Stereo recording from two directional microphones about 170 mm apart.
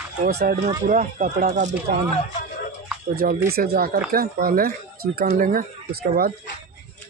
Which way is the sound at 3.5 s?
65° right (ahead or behind).